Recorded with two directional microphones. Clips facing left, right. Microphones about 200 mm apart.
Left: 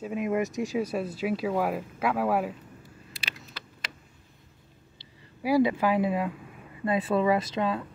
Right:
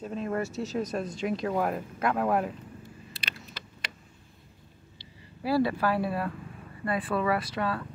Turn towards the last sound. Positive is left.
turn(degrees=20)  # may be behind; listen again after turning